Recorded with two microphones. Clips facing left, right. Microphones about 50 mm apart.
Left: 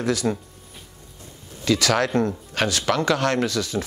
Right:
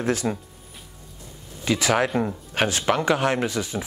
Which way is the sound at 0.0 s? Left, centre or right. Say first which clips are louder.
Left 1 dB; right.